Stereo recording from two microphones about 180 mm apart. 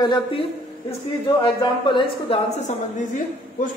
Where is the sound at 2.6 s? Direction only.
40° left (ahead or behind).